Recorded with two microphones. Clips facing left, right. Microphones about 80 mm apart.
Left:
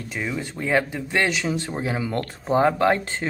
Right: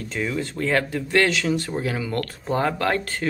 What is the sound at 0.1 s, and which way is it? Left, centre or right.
Speech, centre.